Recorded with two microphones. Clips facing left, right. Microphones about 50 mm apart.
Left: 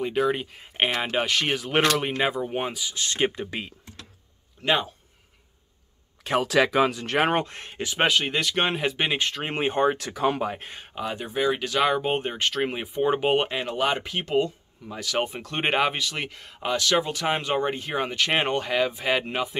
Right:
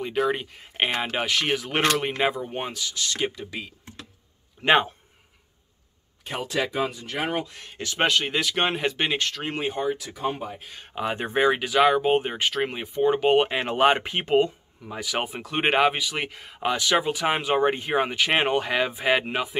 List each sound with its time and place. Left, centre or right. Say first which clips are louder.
0.0 s speech: left 1 dB; centre
2.9 s speech: left 3 dB; left
4.6 s speech: right 4 dB; right
6.2 s speech: left 6 dB; left
7.2 s speech: left 5 dB; left
7.7 s speech: left 1 dB; centre
8.0 s speech: even; centre
9.3 s speech: left 2 dB; left
9.9 s speech: left 4 dB; left
11.1 s speech: right 4 dB; right
11.4 s speech: right 3 dB; centre
11.7 s speech: right 5 dB; centre
12.6 s speech: right 2 dB; centre
13.7 s speech: right 5 dB; right; by 19.5 s centre